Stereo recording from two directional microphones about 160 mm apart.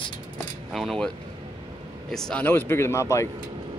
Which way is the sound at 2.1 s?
5° left (ahead or behind).